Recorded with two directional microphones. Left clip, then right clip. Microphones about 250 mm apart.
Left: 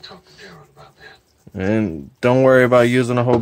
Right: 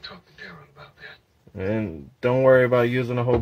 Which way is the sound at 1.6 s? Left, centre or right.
Left.